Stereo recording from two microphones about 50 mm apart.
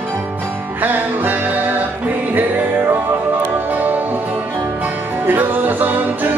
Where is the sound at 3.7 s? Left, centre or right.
Right.